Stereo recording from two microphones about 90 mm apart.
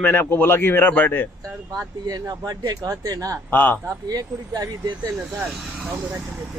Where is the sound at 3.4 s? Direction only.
20° left (ahead or behind).